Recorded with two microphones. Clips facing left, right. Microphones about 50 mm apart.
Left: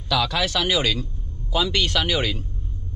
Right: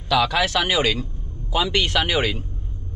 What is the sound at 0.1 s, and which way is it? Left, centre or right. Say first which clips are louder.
Speech: right 3 dB; right.